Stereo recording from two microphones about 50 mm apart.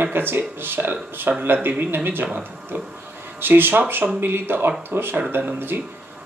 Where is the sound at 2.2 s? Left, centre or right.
Right.